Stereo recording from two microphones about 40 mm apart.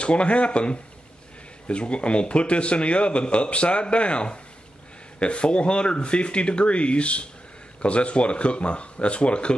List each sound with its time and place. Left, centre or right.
0.0 s speech: left